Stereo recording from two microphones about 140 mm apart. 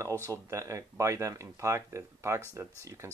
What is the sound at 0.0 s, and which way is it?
Speech, 20° right (ahead or behind).